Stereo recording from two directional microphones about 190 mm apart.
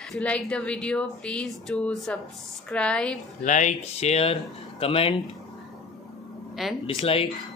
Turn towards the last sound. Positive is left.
turn(degrees=30)  # may be behind; listen again after turning